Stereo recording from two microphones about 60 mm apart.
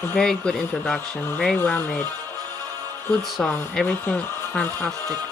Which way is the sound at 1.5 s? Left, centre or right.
Left.